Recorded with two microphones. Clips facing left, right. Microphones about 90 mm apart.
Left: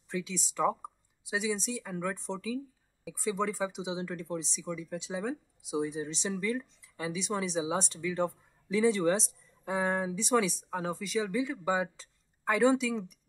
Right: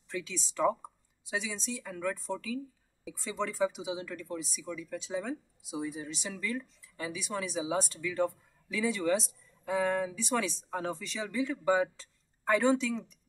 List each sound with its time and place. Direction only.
0.1 s speech: 15° left (ahead or behind)